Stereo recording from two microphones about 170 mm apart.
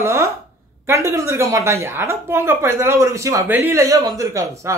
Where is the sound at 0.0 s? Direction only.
15° right (ahead or behind).